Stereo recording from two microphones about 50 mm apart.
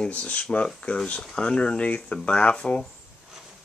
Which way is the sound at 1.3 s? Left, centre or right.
Centre.